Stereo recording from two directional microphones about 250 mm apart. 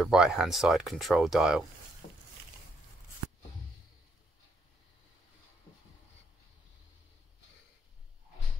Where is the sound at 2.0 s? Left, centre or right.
Left.